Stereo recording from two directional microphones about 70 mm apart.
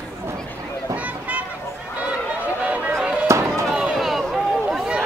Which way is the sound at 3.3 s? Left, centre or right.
Right.